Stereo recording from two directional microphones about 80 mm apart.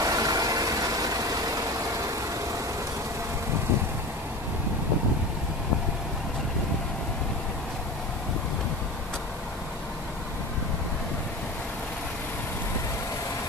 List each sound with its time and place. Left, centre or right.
0.0 s vehicle: right